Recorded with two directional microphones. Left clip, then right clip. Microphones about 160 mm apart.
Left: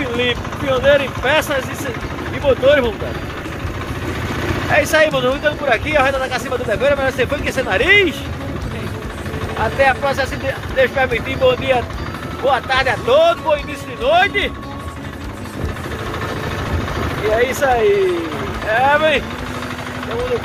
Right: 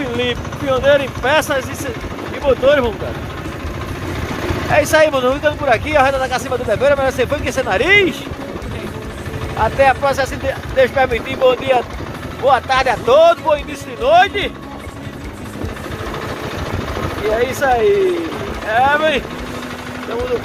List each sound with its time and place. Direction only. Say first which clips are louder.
0.0 s speech: left 1 dB; 15° right (ahead or behind)
4.9 s speech: right 2 dB; 25° right (ahead or behind)
9.6 s speech: right 2 dB; 25° right (ahead or behind)
17.4 s speech: even; 15° right (ahead or behind)